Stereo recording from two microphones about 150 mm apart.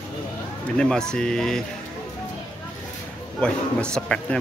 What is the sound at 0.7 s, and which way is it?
Speech, 5° left (ahead or behind).